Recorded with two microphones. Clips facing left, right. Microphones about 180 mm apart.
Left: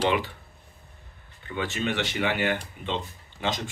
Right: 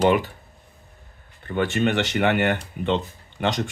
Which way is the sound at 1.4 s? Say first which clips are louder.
Right 8 dB; 60° right (ahead or behind).